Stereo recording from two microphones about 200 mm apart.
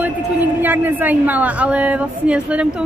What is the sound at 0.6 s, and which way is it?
A woman's voice, 10° right (ahead or behind).